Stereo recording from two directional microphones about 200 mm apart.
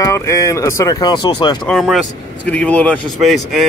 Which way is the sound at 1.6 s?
Centre (ahead or behind).